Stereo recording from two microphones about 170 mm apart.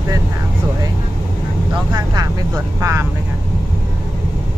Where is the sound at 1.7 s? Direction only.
25° right (ahead or behind).